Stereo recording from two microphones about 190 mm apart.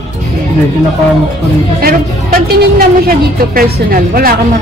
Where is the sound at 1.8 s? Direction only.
50° right (ahead or behind).